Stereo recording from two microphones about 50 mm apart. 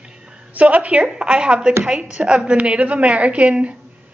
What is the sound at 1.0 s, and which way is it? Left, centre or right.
A woman's voice, centre.